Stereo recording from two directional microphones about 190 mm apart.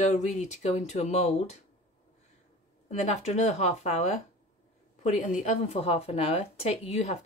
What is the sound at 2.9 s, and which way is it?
A woman's voice, 35° left (ahead or behind).